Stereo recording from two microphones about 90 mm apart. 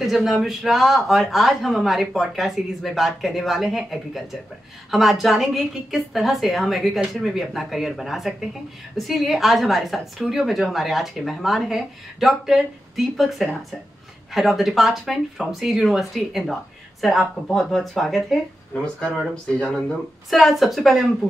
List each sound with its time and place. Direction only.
0.0 s a woman's voice: centre (ahead or behind)